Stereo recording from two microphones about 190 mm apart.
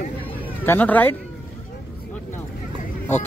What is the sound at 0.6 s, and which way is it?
Speech, 10° left (ahead or behind).